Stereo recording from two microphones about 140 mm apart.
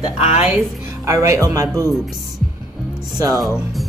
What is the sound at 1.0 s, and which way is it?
Speech, 20° right (ahead or behind).